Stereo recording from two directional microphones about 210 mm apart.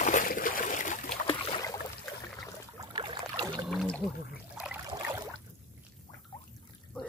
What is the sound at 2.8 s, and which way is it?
Boat, 20° right (ahead or behind).